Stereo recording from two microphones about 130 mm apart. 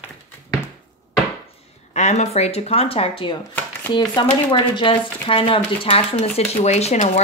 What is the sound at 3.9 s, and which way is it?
A woman's voice, 35° left (ahead or behind).